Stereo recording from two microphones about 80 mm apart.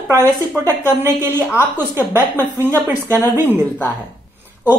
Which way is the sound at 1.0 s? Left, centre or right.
Right.